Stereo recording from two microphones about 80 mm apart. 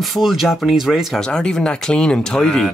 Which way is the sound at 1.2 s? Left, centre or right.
Centre.